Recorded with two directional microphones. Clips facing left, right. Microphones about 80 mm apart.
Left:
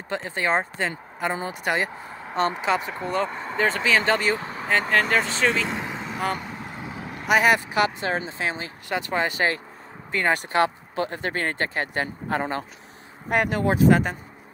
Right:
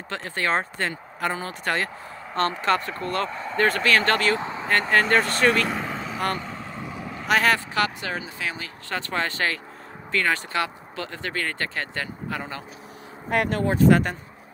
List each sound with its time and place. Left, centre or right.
0.1 s speech: centre
4.4 s vehicle: right
4.6 s speech: centre
8.1 s speech: left
12.4 s speech: left
13.3 s speech: centre
13.8 s speech: centre